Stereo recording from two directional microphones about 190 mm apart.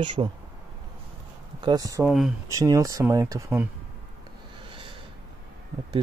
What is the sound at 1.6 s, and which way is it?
Speech, 20° right (ahead or behind).